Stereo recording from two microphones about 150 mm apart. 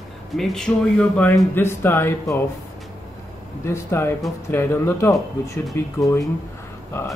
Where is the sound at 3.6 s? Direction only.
15° left (ahead or behind).